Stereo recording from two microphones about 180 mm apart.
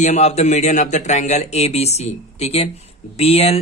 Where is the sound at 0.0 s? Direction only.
40° left (ahead or behind).